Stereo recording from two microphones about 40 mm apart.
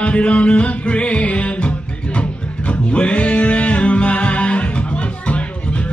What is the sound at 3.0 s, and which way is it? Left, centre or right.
Music, left.